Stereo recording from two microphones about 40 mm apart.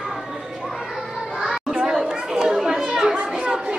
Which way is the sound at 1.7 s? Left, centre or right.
Centre.